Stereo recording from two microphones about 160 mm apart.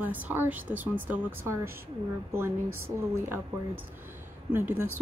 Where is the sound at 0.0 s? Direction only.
10° right (ahead or behind).